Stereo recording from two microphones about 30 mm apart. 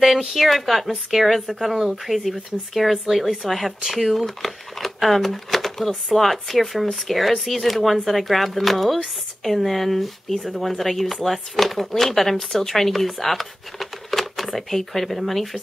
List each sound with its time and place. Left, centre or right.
0.3 s speech: centre
4.4 s speech: centre